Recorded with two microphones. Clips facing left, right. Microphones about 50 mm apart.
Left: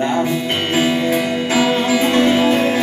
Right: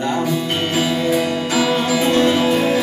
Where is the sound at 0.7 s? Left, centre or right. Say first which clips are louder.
Left 2 dB; left.